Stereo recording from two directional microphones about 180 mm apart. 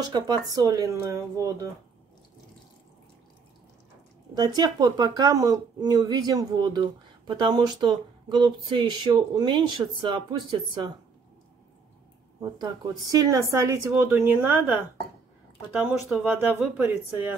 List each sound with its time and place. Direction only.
0.0 s speech: 25° right (ahead or behind)
4.4 s speech: 20° right (ahead or behind)
12.4 s speech: 20° right (ahead or behind)